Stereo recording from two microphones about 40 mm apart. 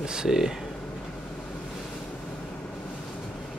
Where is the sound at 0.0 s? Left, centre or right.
Centre.